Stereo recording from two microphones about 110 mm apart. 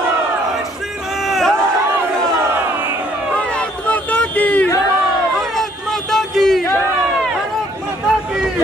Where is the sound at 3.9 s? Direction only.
15° left (ahead or behind).